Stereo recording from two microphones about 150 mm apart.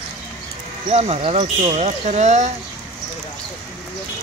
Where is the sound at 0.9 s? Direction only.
45° right (ahead or behind).